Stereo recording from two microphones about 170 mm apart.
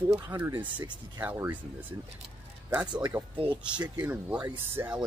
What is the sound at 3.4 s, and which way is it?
Speech, 25° right (ahead or behind).